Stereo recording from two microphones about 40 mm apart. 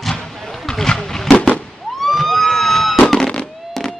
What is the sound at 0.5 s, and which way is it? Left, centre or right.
Vehicle, centre.